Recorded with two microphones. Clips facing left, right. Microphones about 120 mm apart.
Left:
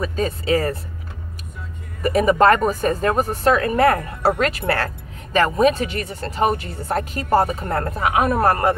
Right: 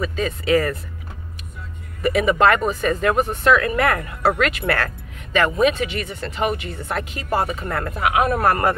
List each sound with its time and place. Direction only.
0.0 s speech: 40° left (ahead or behind)
2.0 s speech: 40° left (ahead or behind)